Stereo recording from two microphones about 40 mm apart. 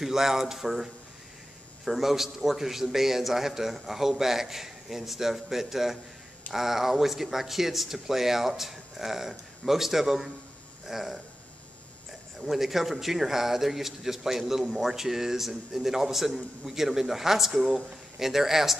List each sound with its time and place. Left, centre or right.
0.0 s speech: centre
1.9 s speech: centre
12.4 s speech: centre